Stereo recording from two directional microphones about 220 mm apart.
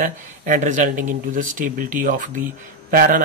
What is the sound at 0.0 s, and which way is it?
Speech, 35° right (ahead or behind).